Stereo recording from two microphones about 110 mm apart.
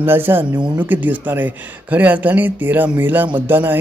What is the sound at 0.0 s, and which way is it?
Speech, 20° right (ahead or behind).